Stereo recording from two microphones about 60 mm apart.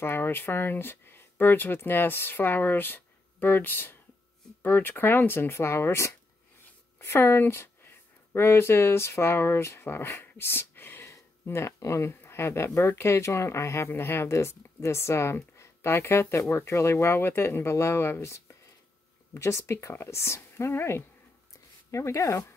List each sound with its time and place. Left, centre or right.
0.0 s speech: left
18.2 s speech: left
21.9 s speech: left